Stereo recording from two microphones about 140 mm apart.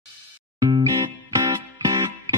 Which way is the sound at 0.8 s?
25° right (ahead or behind).